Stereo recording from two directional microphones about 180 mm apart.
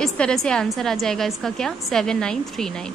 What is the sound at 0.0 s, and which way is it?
A woman's voice, 5° left (ahead or behind).